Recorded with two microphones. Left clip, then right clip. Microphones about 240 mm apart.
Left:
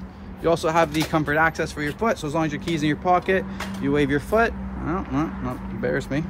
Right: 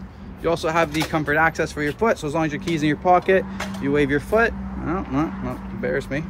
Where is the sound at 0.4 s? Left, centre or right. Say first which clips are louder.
Left 1 dB; centre.